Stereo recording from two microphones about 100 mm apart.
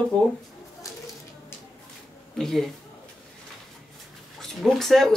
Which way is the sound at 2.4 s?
5° left (ahead or behind).